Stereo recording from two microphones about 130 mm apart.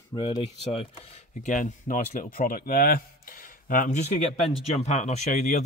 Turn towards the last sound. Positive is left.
turn(degrees=65)  # may be behind; listen again after turning